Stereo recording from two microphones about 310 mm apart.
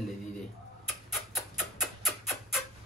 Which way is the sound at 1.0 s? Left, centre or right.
Centre.